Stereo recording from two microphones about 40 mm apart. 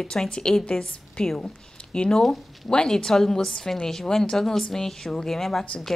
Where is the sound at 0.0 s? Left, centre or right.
Centre.